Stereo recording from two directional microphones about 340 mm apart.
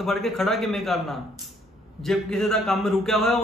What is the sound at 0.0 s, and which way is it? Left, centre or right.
Speech, centre.